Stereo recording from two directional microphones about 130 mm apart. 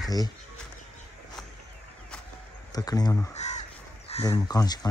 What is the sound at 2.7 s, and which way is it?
Speech, 30° left (ahead or behind).